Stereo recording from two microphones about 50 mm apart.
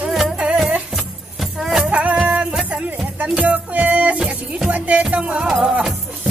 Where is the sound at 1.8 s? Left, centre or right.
Right.